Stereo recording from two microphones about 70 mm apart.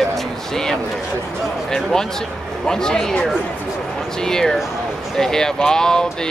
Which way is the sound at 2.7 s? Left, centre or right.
Centre.